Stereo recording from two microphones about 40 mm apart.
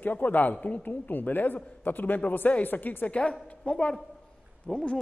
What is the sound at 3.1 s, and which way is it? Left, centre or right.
A woman's voice, left.